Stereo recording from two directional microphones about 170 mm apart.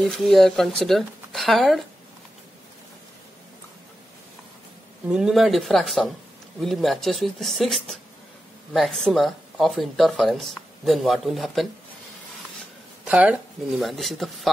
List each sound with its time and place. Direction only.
0.0 s speech: centre (ahead or behind)
5.1 s speech: centre (ahead or behind)
13.0 s speech: 5° right (ahead or behind)